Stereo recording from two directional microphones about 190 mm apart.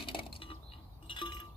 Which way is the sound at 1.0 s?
25° left (ahead or behind).